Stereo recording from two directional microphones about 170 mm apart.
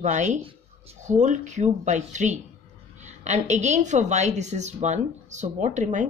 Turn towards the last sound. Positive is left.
turn(degrees=-45)  # may be behind; listen again after turning